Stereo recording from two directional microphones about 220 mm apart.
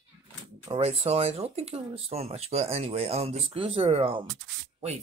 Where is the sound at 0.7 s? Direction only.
25° right (ahead or behind).